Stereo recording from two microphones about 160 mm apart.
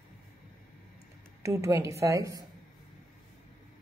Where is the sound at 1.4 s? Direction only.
20° right (ahead or behind).